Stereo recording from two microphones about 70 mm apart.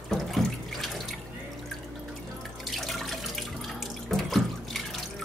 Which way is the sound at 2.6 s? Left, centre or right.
Centre.